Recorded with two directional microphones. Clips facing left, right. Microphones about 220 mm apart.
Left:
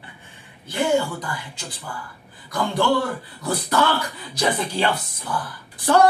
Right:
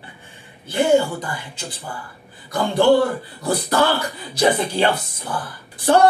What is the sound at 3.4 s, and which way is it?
A man's voice, 30° right (ahead or behind).